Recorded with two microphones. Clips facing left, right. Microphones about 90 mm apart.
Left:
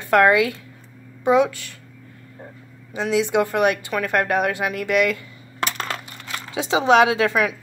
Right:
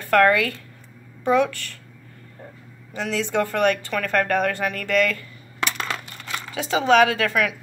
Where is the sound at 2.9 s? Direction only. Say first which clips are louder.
Left 4 dB; 15° left (ahead or behind).